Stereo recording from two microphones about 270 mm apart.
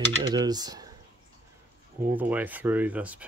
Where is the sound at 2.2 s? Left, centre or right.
Centre.